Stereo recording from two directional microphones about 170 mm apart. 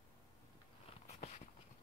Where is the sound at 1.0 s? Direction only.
40° left (ahead or behind).